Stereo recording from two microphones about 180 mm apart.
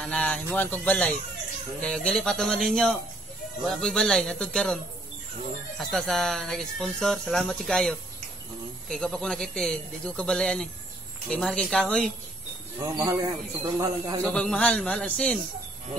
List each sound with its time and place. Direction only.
0.0 s speech: 5° left (ahead or behind)
5.8 s speech: centre (ahead or behind)
12.9 s a man's voice: 15° right (ahead or behind)
14.2 s speech: 5° left (ahead or behind)